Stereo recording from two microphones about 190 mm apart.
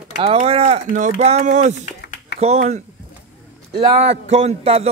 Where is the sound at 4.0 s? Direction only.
35° right (ahead or behind).